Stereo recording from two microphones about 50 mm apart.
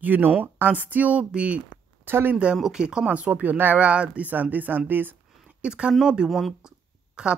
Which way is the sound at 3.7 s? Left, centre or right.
Right.